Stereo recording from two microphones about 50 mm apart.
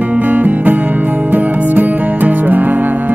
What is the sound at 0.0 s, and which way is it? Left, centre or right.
Music, right.